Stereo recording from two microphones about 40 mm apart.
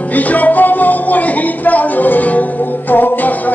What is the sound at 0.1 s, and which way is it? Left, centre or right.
Music, left.